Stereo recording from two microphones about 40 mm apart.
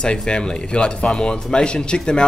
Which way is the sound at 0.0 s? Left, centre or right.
Left.